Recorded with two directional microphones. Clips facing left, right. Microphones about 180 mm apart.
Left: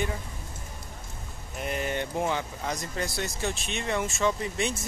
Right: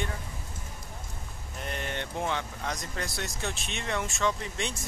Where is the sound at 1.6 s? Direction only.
10° left (ahead or behind).